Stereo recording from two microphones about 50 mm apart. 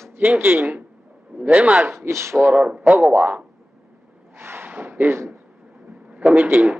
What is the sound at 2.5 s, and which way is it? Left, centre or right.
Speech, right.